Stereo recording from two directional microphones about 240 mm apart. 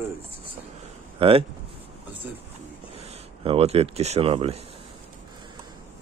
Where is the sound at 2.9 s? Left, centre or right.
Right.